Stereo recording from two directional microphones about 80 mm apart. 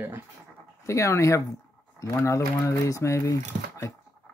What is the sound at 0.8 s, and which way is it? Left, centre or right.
Speech, left.